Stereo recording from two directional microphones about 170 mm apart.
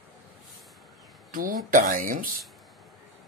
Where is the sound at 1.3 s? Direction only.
55° right (ahead or behind).